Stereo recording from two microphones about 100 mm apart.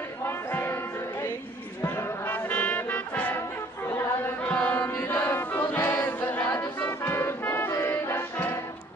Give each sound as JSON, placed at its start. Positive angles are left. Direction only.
{"t": 0.2, "sound": "a sound", "side_deg": 25}
{"t": 1.8, "sound": "brass instrument", "side_deg": 25}
{"t": 4.4, "sound": "music", "side_deg": 15}